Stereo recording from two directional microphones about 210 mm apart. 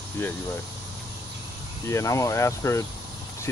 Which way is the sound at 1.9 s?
15° left (ahead or behind).